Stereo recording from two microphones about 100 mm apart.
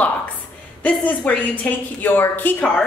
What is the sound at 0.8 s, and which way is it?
A woman's voice, 15° left (ahead or behind).